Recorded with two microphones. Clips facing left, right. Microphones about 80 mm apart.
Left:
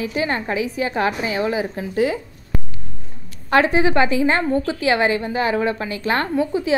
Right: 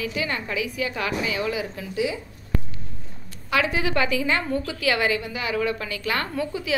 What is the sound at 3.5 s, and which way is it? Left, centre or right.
A woman's voice, left.